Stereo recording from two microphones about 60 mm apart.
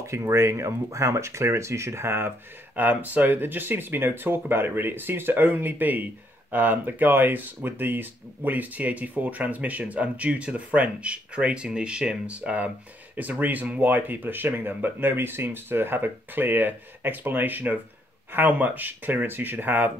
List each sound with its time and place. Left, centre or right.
0.0 s speech: right